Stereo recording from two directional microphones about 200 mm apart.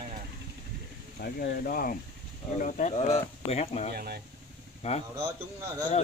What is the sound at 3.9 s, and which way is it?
Speech, 50° right (ahead or behind).